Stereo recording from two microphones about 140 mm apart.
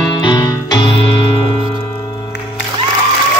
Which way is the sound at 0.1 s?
35° left (ahead or behind).